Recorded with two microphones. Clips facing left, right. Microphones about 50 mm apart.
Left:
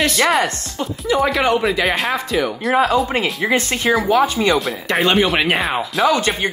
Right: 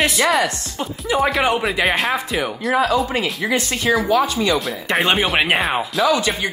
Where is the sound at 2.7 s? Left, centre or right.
Left.